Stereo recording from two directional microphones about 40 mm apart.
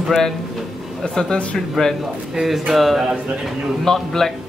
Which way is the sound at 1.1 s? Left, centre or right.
Centre.